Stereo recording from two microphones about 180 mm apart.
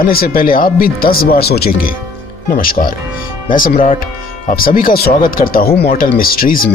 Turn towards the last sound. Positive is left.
turn(degrees=55)  # may be behind; listen again after turning